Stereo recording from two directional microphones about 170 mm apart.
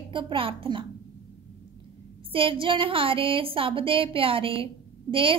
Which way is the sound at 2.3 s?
30° right (ahead or behind).